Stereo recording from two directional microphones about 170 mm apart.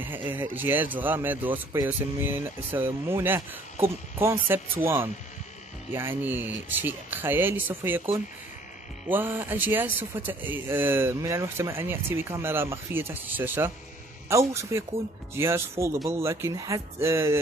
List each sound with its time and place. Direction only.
0.0 s speech: 10° right (ahead or behind)
9.1 s speech: 10° right (ahead or behind)